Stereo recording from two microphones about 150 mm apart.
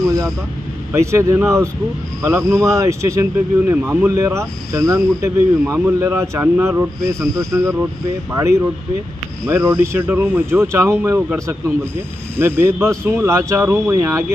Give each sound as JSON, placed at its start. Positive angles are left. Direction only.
{"t": 0.0, "sound": "vehicle", "side_deg": -25}
{"t": 0.9, "sound": "speech", "side_deg": -20}